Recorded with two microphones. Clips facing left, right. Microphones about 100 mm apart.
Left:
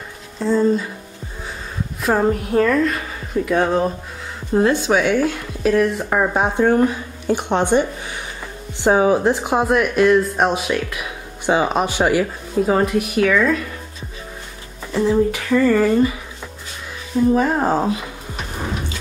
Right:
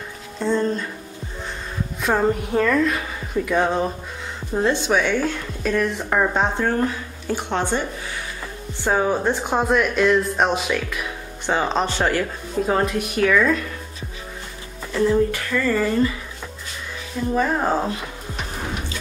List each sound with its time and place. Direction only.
0.4 s speech: 5° left (ahead or behind)
2.0 s speech: centre (ahead or behind); by 7.8 s 20° left (ahead or behind)
8.8 s speech: 15° left (ahead or behind)
15.0 s speech: 20° left (ahead or behind)
17.3 s speech: 10° left (ahead or behind)